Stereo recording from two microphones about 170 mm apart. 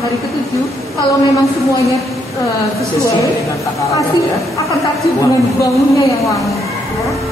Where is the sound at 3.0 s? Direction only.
20° left (ahead or behind).